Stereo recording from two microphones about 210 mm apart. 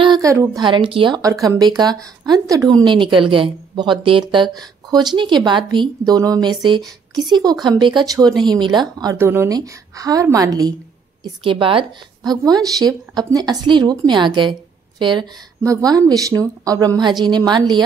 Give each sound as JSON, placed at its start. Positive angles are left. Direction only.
{"t": 0.0, "sound": "a woman's voice", "side_deg": -20}